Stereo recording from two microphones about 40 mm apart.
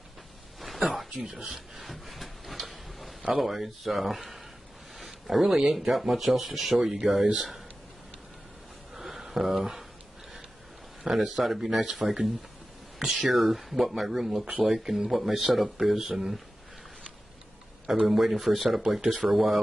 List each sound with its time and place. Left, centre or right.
0.6 s a sound: centre
1.1 s speech: centre
1.8 s a sound: centre
3.3 s speech: centre
8.9 s a sound: centre
11.3 s speech: centre
11.8 s speech: centre
13.3 s speech: centre
17.8 s speech: centre